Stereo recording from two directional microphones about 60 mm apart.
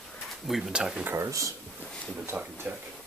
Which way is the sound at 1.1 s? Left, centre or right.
Right.